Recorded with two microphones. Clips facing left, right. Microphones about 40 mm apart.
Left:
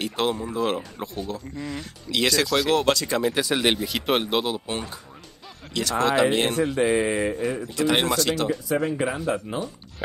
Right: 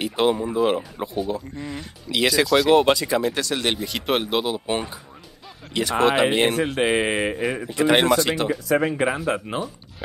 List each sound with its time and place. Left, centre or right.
0.0 s speech: centre
2.7 s speech: centre
3.1 s speech: centre
3.3 s speech: centre
4.6 s speech: centre
7.0 s mantra: right
7.7 s speech: right
8.6 s speech: right